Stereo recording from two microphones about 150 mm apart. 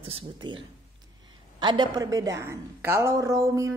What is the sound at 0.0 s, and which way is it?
Speech, 35° right (ahead or behind).